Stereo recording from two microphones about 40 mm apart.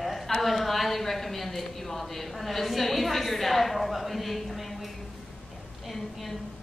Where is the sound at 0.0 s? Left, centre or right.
Centre.